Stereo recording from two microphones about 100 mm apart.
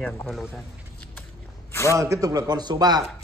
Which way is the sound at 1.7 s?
30° left (ahead or behind).